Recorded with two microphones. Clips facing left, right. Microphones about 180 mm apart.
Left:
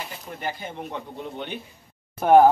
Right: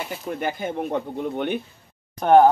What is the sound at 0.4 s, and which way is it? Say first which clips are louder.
Speech: right 5 dB; 50° right (ahead or behind).